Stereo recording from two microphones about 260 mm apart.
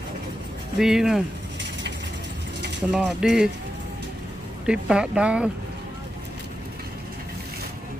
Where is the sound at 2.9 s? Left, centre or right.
Centre.